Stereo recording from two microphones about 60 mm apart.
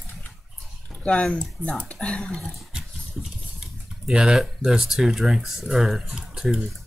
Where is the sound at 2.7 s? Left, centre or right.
Centre.